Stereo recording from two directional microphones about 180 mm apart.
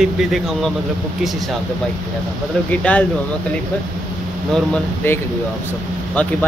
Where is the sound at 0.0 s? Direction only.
5° right (ahead or behind).